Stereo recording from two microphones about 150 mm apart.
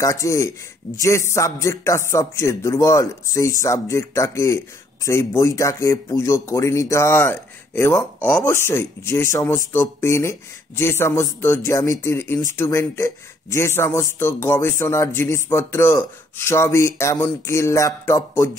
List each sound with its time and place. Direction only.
0.0 s a man's voice: 20° left (ahead or behind)